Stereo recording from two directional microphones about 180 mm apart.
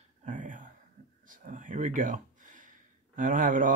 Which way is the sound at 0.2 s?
45° right (ahead or behind).